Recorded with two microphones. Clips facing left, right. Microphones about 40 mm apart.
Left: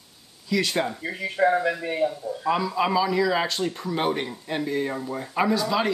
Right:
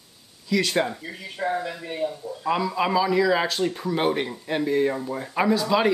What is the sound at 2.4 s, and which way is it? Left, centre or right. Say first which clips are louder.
Speech: even; centre.